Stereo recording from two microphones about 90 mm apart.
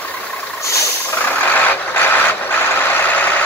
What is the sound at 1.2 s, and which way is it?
Vehicle, 20° left (ahead or behind).